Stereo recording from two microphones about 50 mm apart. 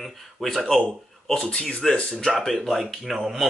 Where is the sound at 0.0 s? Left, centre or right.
Centre.